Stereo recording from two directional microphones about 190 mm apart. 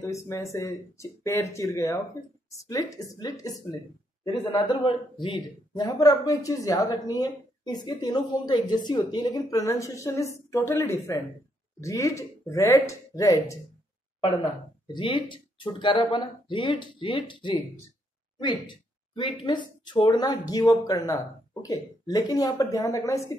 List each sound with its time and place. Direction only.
0.0 s speech: 15° left (ahead or behind)